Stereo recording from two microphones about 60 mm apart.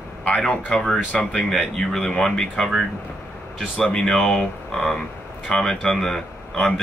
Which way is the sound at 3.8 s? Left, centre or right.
Centre.